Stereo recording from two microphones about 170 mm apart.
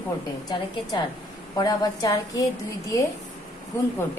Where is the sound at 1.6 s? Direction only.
25° left (ahead or behind).